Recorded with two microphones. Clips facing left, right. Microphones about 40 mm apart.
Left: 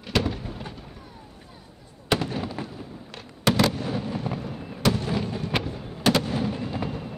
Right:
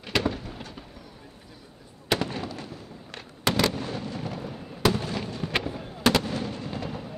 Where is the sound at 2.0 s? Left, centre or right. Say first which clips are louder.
Left 2 dB; centre.